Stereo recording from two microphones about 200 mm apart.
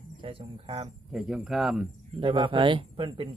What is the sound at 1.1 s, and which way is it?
Speech, centre (ahead or behind).